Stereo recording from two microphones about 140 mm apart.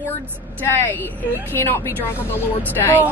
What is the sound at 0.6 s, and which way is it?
A woman's voice, 15° left (ahead or behind).